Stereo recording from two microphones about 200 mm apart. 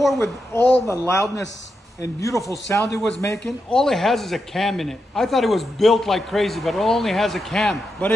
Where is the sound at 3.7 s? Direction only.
Centre (ahead or behind).